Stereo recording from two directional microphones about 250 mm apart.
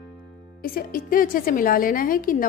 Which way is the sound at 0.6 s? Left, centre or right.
Left.